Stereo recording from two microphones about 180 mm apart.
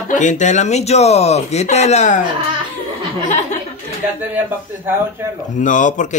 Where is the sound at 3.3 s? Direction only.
40° left (ahead or behind).